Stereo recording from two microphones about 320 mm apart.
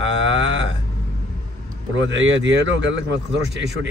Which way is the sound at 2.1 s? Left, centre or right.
Right.